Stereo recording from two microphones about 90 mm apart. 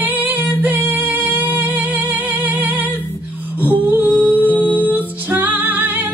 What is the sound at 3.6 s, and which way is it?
Humming, 20° right (ahead or behind).